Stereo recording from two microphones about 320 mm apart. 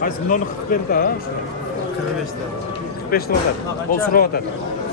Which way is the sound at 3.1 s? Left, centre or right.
Left.